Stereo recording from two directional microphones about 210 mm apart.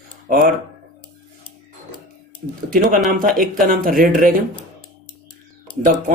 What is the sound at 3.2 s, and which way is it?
Speech, 40° right (ahead or behind).